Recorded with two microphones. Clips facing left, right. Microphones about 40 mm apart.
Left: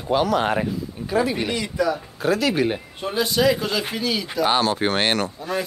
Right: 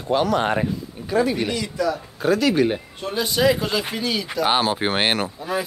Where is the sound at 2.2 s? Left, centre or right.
Centre.